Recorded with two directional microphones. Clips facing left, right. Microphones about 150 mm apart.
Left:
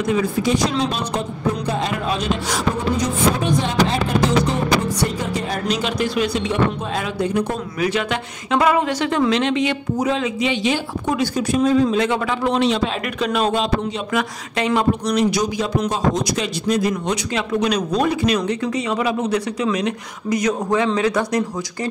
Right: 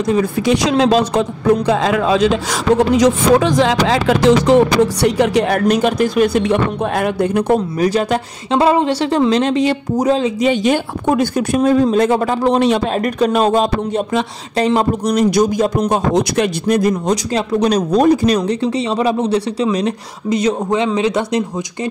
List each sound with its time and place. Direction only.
0.0 s a woman's voice: 35° right (ahead or behind)
0.5 s a woman's voice: 85° right
5.0 s speech: 75° right (ahead or behind); by 7.6 s 60° right (ahead or behind)
7.8 s a woman's voice: 40° right (ahead or behind)
14.1 s speech: 30° right (ahead or behind); by 16.9 s 55° right (ahead or behind)
16.9 s a woman's voice: 35° right (ahead or behind)